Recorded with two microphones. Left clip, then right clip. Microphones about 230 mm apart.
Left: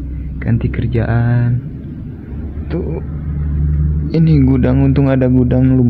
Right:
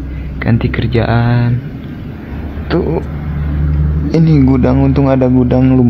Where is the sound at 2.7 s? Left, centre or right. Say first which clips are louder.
Right 8 dB; right.